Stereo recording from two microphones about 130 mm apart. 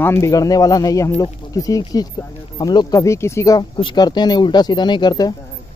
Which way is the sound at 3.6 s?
40° left (ahead or behind).